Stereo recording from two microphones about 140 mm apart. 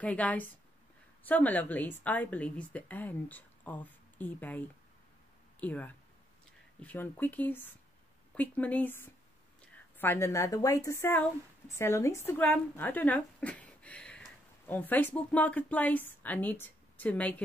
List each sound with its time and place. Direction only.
0.0 s a woman's voice: 10° left (ahead or behind)